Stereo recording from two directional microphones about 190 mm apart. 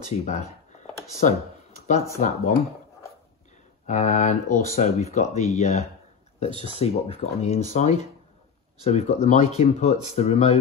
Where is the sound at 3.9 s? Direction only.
35° left (ahead or behind).